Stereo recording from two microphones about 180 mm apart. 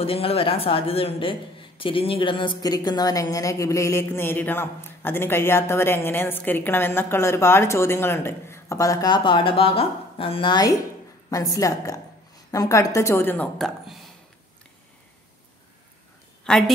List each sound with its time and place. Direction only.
0.0 s a woman's voice: 30° left (ahead or behind); by 13.9 s 5° left (ahead or behind)
16.4 s a woman's voice: centre (ahead or behind)